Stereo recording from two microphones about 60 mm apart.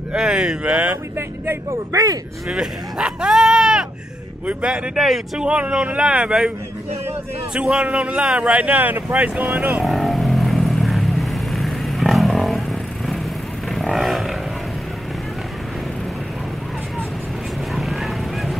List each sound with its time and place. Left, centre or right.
0.1 s speech: centre
1.1 s speech: right
1.9 s speech: right
2.6 s speech: centre
4.9 s speech: centre
5.4 s speech: centre
7.5 s speech: centre
9.5 s speech: centre
9.8 s vehicle: centre